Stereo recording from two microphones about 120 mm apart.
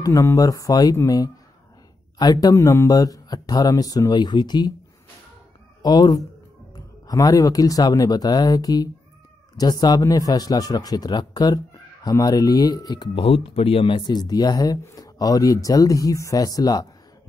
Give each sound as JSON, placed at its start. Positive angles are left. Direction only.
{"t": 0.0, "sound": "speech", "side_deg": 25}
{"t": 5.8, "sound": "speech", "side_deg": 35}
{"t": 13.2, "sound": "speech", "side_deg": 50}